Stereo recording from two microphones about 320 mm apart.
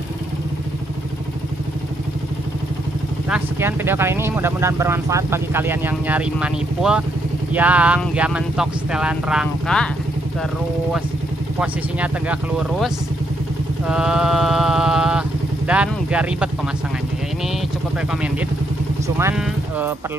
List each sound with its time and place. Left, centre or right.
3.3 s speech: centre
11.6 s speech: centre
13.8 s vehicle: centre
19.0 s speech: centre